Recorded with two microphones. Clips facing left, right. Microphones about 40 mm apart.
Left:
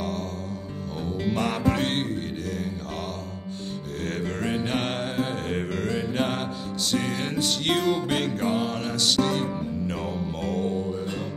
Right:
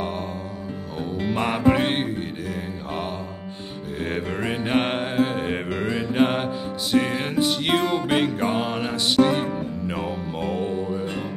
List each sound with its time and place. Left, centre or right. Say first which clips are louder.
1.2 s music: right 4 dB; centre
4.0 s music: right 3 dB; centre